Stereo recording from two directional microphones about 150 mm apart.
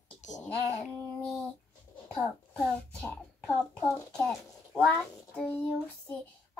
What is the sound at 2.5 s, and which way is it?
Speech, 10° left (ahead or behind).